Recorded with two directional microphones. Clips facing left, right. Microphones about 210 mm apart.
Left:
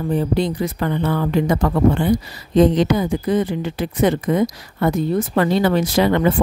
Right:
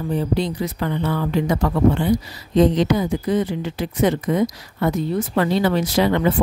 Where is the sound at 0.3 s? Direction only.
50° left (ahead or behind).